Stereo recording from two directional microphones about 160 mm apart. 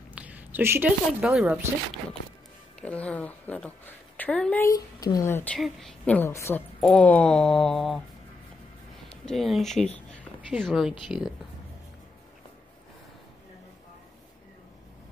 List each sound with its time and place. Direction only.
0.1 s speech: 10° right (ahead or behind)
2.8 s a woman's voice: 10° left (ahead or behind)
4.6 s speech: 25° left (ahead or behind)
5.6 s a woman's voice: centre (ahead or behind)
6.8 s a sound: 5° left (ahead or behind)
9.1 s speech: 5° left (ahead or behind)
10.6 s a sound: centre (ahead or behind)